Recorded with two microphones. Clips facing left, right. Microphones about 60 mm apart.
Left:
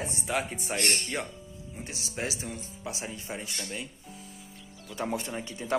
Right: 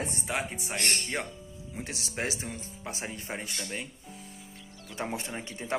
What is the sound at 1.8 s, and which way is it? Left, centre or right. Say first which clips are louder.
Speech: right 1 dB; right.